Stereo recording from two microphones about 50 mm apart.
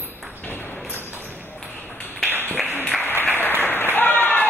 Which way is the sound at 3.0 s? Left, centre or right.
Left.